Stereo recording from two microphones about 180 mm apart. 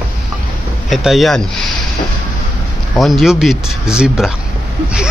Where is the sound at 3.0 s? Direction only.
Centre (ahead or behind).